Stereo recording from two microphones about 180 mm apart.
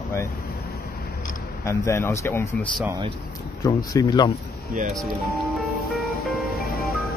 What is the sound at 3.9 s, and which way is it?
Speech, 20° left (ahead or behind).